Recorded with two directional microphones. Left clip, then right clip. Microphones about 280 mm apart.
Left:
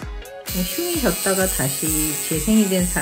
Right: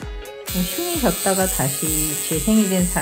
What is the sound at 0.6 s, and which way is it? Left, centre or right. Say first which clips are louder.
Speech: even; right.